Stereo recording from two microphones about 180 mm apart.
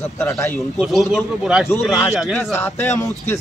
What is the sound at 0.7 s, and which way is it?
Speech, centre (ahead or behind).